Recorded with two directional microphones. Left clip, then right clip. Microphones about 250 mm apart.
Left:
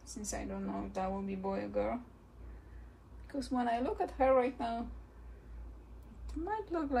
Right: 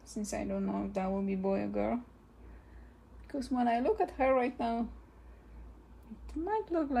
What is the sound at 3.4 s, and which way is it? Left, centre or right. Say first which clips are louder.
A woman's voice: right 3 dB; right.